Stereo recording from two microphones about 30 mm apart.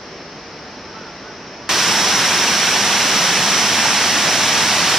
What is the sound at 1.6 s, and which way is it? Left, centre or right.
Waterfall, centre.